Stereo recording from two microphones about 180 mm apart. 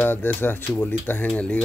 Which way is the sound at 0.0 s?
10° left (ahead or behind).